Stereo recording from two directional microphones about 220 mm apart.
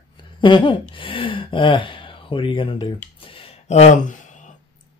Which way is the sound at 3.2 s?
25° left (ahead or behind).